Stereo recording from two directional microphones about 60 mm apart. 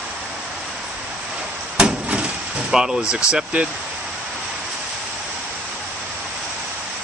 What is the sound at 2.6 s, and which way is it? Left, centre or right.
Speech, centre.